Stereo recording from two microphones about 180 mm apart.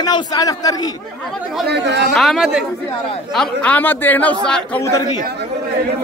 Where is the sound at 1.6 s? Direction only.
70° right (ahead or behind).